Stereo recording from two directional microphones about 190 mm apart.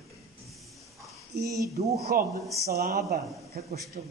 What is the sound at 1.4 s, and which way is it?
Speech, 15° right (ahead or behind).